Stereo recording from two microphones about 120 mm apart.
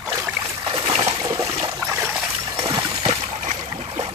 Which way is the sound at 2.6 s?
50° right (ahead or behind).